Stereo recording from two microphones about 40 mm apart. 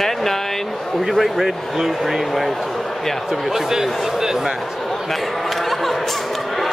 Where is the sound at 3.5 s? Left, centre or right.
Centre.